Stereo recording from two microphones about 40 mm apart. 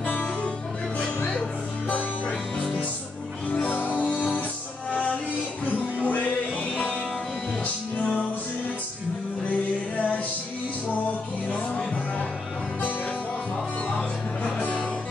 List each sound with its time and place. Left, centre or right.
0.0 s music: left
1.9 s music: left
3.7 s music: left
6.0 s music: left
9.9 s music: left
11.5 s music: left
14.4 s music: left